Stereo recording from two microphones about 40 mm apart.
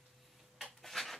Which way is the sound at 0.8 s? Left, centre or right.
Centre.